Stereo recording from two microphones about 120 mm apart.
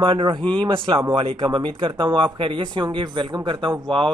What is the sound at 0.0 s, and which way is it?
Speech, 45° right (ahead or behind).